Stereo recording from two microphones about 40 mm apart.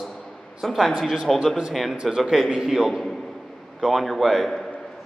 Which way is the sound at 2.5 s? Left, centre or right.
Centre.